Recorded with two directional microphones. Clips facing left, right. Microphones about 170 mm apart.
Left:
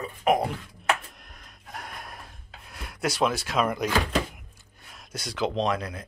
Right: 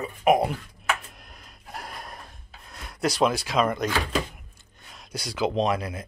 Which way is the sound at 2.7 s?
5° left (ahead or behind).